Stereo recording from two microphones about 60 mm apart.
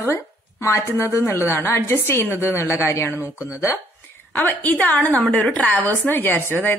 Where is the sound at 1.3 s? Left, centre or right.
Left.